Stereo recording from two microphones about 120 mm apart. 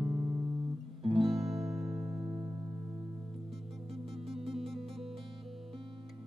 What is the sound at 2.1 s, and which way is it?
Music, 25° right (ahead or behind).